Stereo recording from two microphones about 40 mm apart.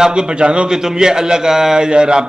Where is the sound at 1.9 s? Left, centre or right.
Right.